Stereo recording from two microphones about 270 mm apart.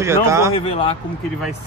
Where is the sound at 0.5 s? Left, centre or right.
Left.